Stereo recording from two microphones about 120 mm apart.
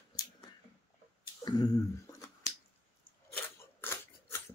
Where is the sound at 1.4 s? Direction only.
30° left (ahead or behind).